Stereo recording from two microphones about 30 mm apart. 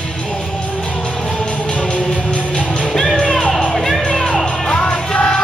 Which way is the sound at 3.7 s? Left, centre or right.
Centre.